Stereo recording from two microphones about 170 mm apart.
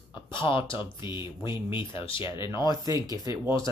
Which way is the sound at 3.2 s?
25° left (ahead or behind).